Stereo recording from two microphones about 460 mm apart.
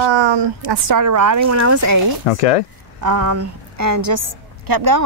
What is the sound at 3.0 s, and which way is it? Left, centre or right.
A woman's voice, right.